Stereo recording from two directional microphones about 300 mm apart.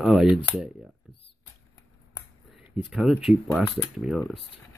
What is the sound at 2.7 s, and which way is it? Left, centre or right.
Speech, centre.